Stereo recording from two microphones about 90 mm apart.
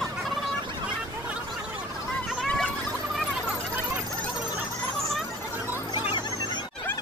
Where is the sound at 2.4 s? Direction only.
10° left (ahead or behind).